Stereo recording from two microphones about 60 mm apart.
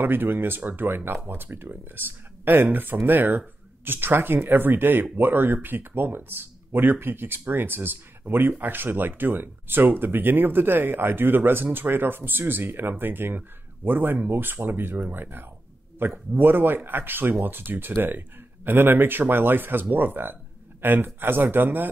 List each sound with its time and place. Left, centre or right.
0.0 s speech: right